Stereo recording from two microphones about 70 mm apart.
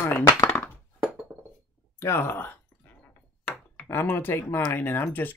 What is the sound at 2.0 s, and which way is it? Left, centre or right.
Speech, left.